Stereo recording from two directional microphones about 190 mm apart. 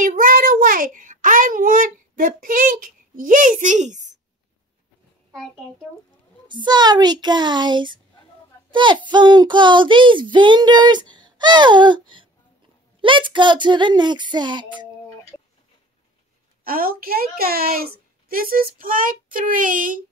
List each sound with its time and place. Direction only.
0.0 s a child's voice: 45° right (ahead or behind)
6.4 s speech: 25° right (ahead or behind)
9.1 s speech: 25° right (ahead or behind)
15.3 s a sound: 10° left (ahead or behind)
16.6 s speech: 50° right (ahead or behind)